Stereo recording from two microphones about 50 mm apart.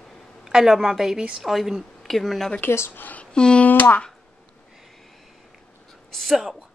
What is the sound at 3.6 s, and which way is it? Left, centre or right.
Speech, left.